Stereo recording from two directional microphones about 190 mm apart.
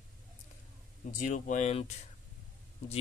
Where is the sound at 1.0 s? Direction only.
40° left (ahead or behind).